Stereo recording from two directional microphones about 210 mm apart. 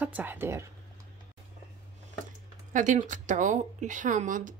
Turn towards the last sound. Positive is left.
turn(degrees=-40)  # may be behind; listen again after turning